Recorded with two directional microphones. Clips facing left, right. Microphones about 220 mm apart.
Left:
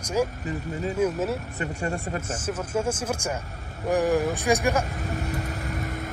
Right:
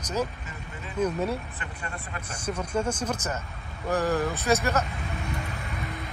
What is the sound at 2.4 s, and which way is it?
Speech, 5° left (ahead or behind).